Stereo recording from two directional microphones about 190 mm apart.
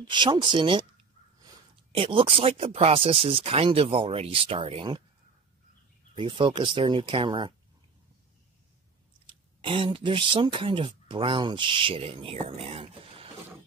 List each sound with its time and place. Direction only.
0.1 s speech: 25° right (ahead or behind)
1.9 s speech: 30° right (ahead or behind)
6.1 s speech: 25° right (ahead or behind)
9.7 s speech: 30° right (ahead or behind)